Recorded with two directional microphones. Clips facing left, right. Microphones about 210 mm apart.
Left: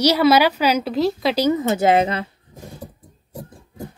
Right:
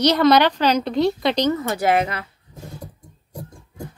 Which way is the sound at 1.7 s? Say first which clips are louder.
Left 3 dB; 25° left (ahead or behind).